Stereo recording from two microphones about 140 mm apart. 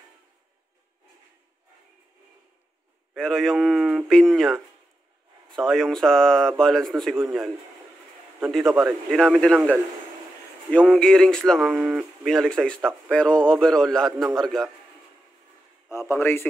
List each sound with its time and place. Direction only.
3.2 s speech: 5° left (ahead or behind)
10.7 s speech: 5° left (ahead or behind)
15.9 s a man's voice: 20° left (ahead or behind)